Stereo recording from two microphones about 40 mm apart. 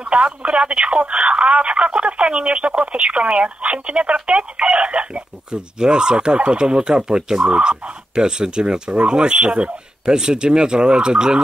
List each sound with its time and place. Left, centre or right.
0.0 s speech: right